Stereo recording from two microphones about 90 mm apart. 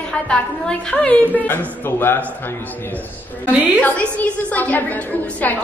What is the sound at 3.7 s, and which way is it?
A woman's voice, 15° left (ahead or behind).